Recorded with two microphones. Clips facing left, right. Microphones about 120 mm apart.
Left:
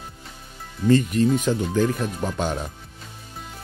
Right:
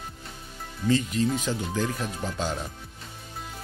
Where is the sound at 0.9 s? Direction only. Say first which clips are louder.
Left 6 dB; 50° left (ahead or behind).